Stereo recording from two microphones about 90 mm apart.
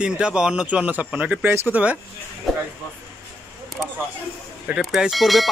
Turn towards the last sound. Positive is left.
turn(degrees=0)  # may be behind; listen again after turning